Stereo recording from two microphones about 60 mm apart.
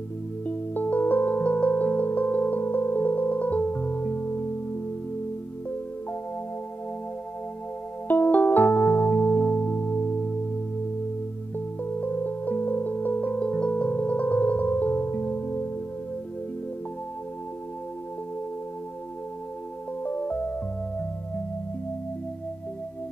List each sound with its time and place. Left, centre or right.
0.5 s music: left
8.1 s music: left
11.5 s music: left
20.0 s music: left